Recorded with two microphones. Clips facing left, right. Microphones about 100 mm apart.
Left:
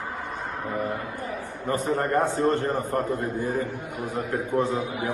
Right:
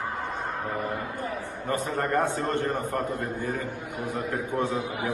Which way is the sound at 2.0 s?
30° left (ahead or behind).